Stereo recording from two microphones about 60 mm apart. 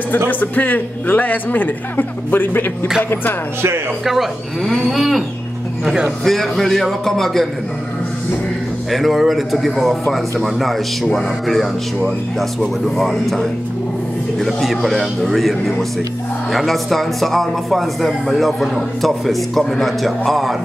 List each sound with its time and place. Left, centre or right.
0.3 s a man's voice: left
4.0 s speech: centre
6.2 s speech: centre
8.9 s speech: centre